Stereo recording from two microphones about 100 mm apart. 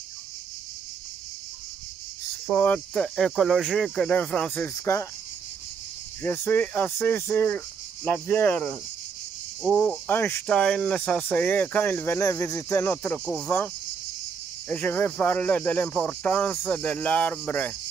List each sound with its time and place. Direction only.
2.5 s speech: 15° left (ahead or behind)
4.7 s speech: 30° left (ahead or behind)
6.2 s speech: 20° left (ahead or behind)
10.0 s speech: 20° left (ahead or behind)
10.4 s speech: 10° left (ahead or behind)
13.2 s speech: 5° left (ahead or behind)
14.7 s speech: 20° left (ahead or behind)